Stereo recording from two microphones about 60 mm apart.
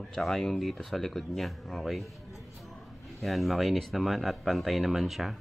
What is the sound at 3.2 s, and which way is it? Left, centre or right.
Speech, centre.